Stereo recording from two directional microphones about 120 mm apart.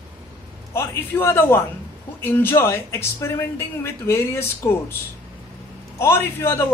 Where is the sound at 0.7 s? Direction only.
20° left (ahead or behind).